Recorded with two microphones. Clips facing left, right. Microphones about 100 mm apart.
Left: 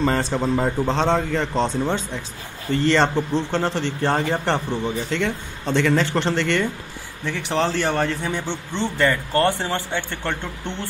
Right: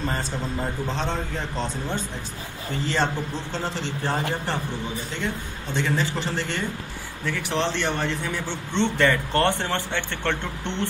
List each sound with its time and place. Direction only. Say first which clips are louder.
0.0 s a man's voice: left 8 dB; 90° left
3.5 s speech: left 6 dB; 65° left (ahead or behind)
5.1 s speech: left 5 dB; 90° left; by 6.7 s 75° left (ahead or behind)
7.4 s a man's voice: left 4 dB; 40° left (ahead or behind)
8.8 s speech: left 1 dB; 5° left (ahead or behind)